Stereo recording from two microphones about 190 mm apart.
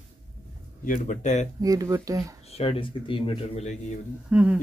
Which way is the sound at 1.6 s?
20° right (ahead or behind).